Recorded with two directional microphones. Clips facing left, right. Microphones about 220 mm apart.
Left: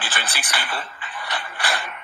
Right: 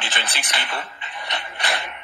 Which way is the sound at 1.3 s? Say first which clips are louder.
Even; 25° right (ahead or behind).